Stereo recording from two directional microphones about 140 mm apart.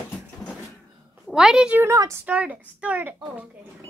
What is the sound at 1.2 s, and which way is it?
Speech, 5° right (ahead or behind).